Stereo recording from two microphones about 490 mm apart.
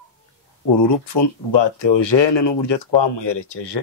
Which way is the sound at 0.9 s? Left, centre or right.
Left.